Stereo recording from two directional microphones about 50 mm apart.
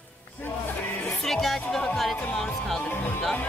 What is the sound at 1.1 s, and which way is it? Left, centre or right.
Speech, centre.